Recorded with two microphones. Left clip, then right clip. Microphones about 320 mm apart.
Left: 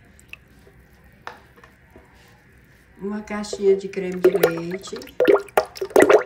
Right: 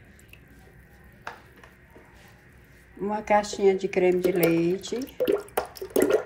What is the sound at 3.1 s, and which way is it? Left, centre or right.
Speech, centre.